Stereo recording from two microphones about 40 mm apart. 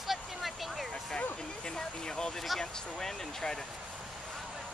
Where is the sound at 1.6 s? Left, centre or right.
Centre.